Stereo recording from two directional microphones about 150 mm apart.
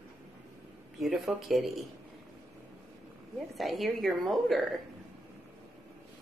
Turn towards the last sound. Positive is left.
turn(degrees=0)  # may be behind; listen again after turning